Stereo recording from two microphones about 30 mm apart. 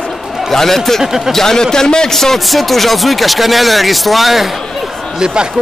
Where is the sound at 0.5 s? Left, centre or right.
Centre.